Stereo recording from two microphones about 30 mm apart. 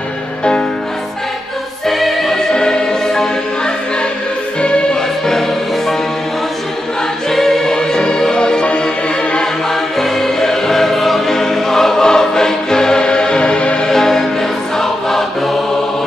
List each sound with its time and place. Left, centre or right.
0.4 s music: left
1.9 s music: centre
2.5 s music: left
4.6 s music: left
7.2 s music: centre
9.7 s choir: centre
11.3 s music: centre; by 13.8 s left
13.8 s music: centre
14.8 s choir: centre